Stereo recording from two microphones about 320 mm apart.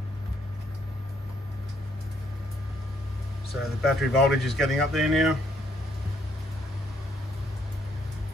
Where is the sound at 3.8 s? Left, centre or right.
Centre.